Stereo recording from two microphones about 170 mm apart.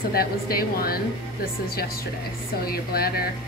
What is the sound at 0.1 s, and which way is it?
Speech, 60° left (ahead or behind).